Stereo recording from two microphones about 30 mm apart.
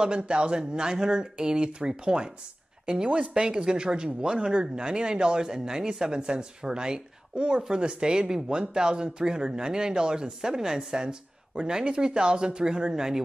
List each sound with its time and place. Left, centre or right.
0.0 s speech: right